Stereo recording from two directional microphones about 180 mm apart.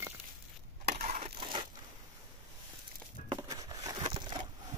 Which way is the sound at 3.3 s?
20° right (ahead or behind).